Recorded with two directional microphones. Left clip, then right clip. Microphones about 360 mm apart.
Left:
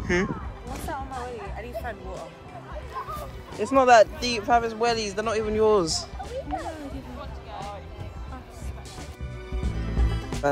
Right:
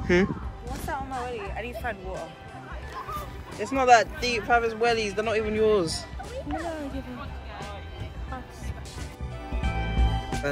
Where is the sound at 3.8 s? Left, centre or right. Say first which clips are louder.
Left 1 dB; centre.